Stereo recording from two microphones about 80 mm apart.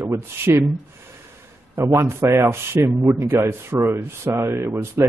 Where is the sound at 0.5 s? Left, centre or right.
Right.